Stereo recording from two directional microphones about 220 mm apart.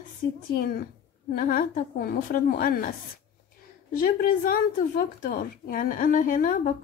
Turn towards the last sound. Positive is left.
turn(degrees=40)  # may be behind; listen again after turning